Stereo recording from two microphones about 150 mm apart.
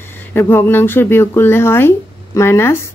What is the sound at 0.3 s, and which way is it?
Speech, 15° left (ahead or behind).